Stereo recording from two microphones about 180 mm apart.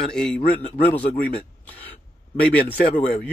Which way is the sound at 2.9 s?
45° left (ahead or behind).